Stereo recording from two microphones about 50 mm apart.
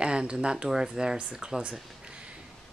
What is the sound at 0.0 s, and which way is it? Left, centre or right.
Speech, centre.